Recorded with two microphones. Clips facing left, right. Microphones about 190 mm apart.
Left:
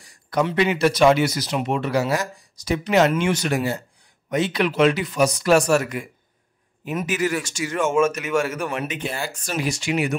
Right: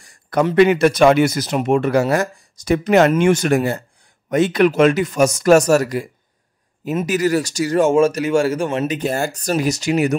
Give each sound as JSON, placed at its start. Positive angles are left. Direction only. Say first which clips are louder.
{"t": 0.0, "sound": "speech", "louder": "right 4 dB", "side_deg": -50}
{"t": 7.1, "sound": "speech", "louder": "right 6 dB", "side_deg": -40}